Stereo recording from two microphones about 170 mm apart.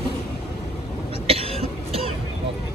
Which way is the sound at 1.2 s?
35° right (ahead or behind).